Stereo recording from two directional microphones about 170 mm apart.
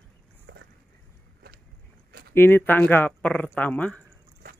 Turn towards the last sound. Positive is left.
turn(degrees=5)  # may be behind; listen again after turning